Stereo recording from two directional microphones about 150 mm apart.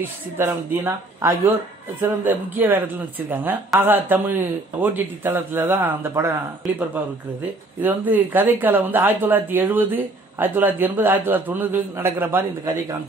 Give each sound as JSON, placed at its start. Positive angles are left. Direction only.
{"t": 0.4, "sound": "speech", "side_deg": -15}
{"t": 3.8, "sound": "speech", "side_deg": -15}
{"t": 7.8, "sound": "speech", "side_deg": -10}